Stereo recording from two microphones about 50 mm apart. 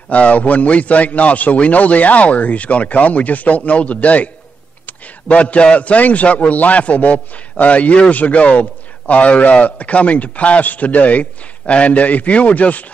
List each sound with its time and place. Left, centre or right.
0.1 s a man's voice: left